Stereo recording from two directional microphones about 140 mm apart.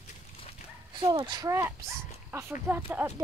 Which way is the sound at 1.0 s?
30° right (ahead or behind).